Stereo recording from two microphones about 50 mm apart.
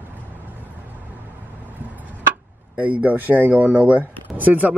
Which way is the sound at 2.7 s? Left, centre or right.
Right.